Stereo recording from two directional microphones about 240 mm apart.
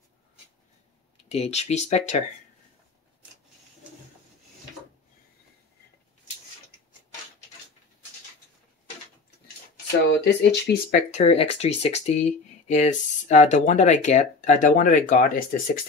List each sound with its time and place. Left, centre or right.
1.3 s speech: left
10.0 s speech: left